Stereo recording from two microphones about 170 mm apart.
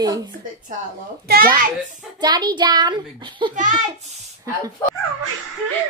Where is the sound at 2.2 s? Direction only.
25° right (ahead or behind).